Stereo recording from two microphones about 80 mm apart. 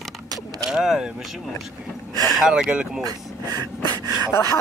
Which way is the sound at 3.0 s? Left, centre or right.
Right.